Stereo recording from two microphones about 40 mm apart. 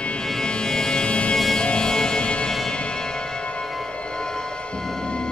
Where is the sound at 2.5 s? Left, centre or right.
Centre.